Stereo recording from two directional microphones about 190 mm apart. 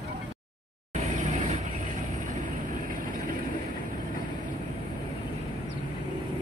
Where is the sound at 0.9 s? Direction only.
40° right (ahead or behind).